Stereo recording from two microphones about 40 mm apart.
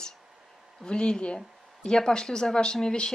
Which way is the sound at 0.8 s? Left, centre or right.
Left.